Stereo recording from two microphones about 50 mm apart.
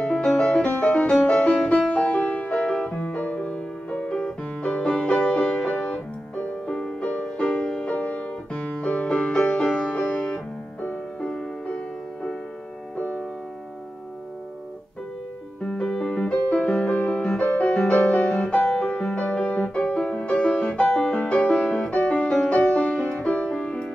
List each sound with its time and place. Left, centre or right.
0.0 s music: centre
0.7 s music: left; by 7.9 s centre
7.9 s music: left
15.6 s music: centre
18.7 s music: centre
19.3 s music: left